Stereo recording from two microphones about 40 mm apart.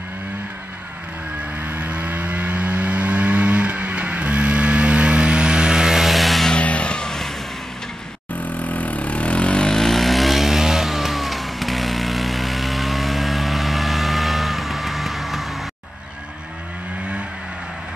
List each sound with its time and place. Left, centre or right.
1.7 s vehicle: right; by 6.5 s centre
6.5 s vehicle: left
7.1 s vehicle: centre
8.4 s vehicle: left
9.7 s vehicle: centre